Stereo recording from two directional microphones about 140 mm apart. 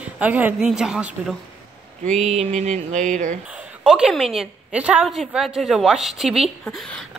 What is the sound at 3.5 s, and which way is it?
A woman's voice, 5° right (ahead or behind).